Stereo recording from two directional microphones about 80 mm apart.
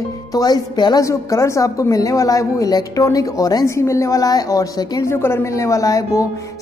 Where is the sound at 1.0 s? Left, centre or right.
Left.